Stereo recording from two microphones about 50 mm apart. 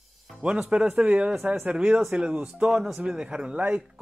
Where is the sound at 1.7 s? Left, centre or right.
Right.